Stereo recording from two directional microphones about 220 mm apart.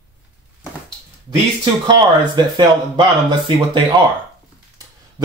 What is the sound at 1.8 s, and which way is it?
Speech, 20° right (ahead or behind).